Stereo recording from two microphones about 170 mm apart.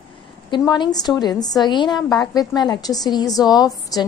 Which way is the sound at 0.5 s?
25° left (ahead or behind).